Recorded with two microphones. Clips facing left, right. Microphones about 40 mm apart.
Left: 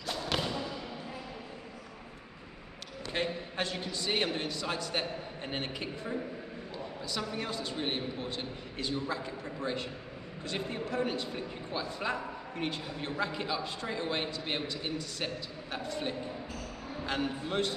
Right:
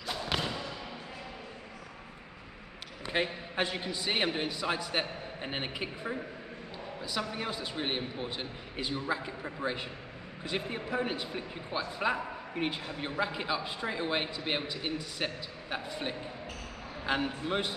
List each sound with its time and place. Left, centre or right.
0.0 s thump: centre
3.1 s a man's voice: centre